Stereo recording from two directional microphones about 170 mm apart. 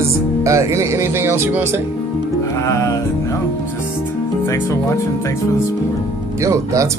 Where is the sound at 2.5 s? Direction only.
20° left (ahead or behind).